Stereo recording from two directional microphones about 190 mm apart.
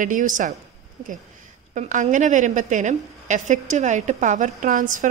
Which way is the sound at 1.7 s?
40° right (ahead or behind).